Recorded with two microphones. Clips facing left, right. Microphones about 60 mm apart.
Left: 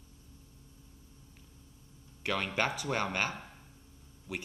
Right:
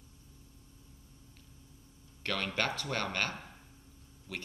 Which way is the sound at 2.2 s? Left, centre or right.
Centre.